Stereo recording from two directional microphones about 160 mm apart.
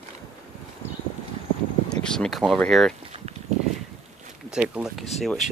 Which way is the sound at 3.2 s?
40° right (ahead or behind).